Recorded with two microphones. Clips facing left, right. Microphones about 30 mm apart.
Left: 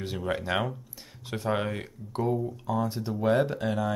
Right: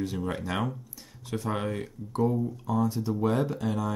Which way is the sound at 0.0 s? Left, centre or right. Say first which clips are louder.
Even; left.